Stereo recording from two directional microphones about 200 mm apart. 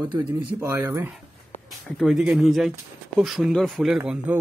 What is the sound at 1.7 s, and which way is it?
Speech, centre (ahead or behind).